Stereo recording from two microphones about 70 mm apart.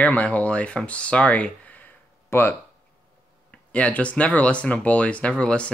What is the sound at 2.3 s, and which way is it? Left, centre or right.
Speech, left.